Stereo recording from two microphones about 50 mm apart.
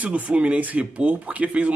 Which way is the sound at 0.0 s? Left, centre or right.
Right.